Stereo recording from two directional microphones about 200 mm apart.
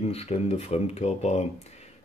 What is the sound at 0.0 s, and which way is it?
Speech, 30° left (ahead or behind).